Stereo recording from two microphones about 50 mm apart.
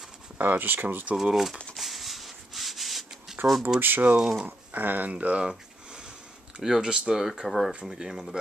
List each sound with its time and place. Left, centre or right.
0.4 s speech: right
1.1 s speech: centre
1.8 s rub: centre
3.3 s a sound: centre
3.8 s speech: right
4.2 s speech: centre
4.5 s speech: right
5.1 s speech: right
6.6 s speech: centre
7.2 s speech: centre